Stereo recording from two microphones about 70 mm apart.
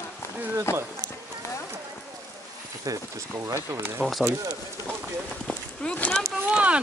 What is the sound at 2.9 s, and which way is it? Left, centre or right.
Speech, right.